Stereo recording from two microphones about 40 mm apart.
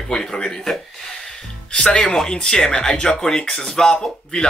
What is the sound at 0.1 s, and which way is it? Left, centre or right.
Speech, centre.